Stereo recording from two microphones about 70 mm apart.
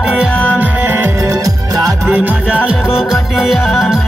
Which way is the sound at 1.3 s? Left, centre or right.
Right.